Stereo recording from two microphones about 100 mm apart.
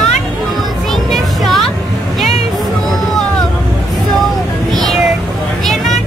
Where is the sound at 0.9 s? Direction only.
Centre (ahead or behind).